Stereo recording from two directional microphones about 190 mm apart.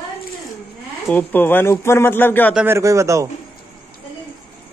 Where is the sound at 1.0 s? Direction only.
10° left (ahead or behind).